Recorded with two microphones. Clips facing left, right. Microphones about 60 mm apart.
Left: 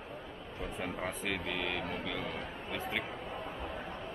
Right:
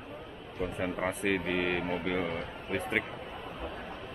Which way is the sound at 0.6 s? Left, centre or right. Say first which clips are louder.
Right 6 dB; centre.